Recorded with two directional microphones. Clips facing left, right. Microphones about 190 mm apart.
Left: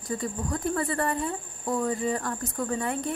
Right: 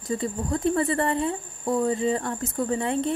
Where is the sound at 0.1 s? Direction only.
25° right (ahead or behind).